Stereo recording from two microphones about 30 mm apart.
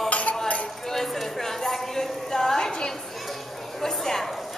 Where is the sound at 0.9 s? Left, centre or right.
Centre.